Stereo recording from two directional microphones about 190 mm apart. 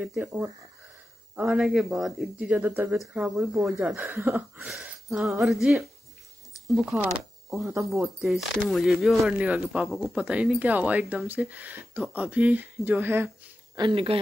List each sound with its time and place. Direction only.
0.0 s speech: 10° right (ahead or behind)
4.6 s speech: centre (ahead or behind)
7.6 s speech: 15° right (ahead or behind)
8.2 s speech: centre (ahead or behind)
13.7 s speech: 25° right (ahead or behind)